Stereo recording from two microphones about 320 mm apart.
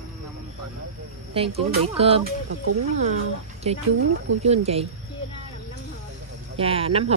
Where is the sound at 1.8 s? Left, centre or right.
Centre.